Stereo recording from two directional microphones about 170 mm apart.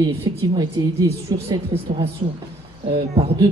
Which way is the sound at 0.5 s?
20° right (ahead or behind).